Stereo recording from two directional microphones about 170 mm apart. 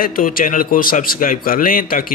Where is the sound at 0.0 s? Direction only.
55° left (ahead or behind).